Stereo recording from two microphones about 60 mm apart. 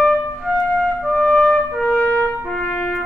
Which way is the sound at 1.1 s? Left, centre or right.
Centre.